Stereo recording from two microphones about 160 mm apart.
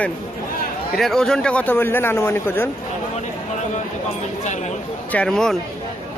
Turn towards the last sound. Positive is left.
turn(degrees=5)  # may be behind; listen again after turning